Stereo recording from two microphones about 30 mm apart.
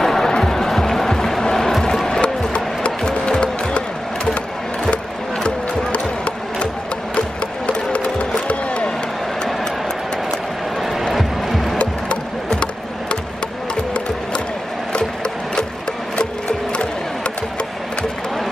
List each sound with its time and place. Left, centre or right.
0.0 s music: centre
2.2 s music: left
7.2 s music: left
11.1 s music: centre